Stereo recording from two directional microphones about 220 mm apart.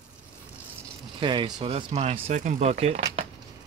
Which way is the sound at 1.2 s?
20° right (ahead or behind).